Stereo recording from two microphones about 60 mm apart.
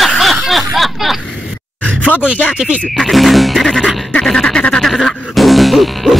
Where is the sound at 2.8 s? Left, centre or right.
Centre.